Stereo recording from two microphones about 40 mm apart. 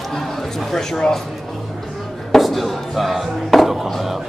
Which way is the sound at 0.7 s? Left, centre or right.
Centre.